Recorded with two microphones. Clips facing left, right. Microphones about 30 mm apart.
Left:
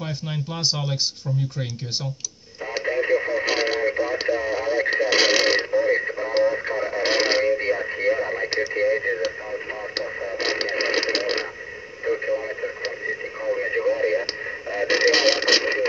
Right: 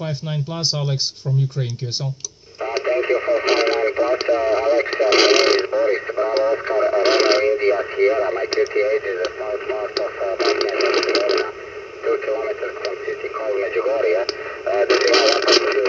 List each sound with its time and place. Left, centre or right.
2.8 s radio: right
4.0 s speech: right
5.9 s speech: centre
6.8 s speech: right
7.4 s speech: right
10.3 s radio: right
12.1 s radio: centre
14.2 s radio: right